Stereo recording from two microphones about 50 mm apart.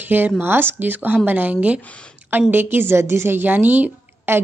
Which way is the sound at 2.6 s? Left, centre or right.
Right.